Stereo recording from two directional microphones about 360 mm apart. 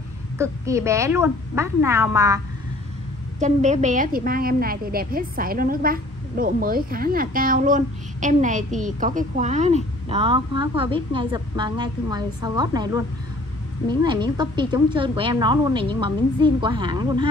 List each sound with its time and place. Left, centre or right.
0.4 s a woman's voice: centre
3.3 s a woman's voice: centre